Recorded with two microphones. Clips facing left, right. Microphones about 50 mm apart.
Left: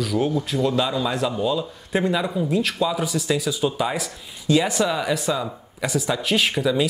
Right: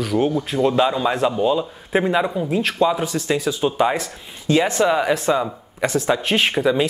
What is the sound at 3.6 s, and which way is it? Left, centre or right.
Speech, right.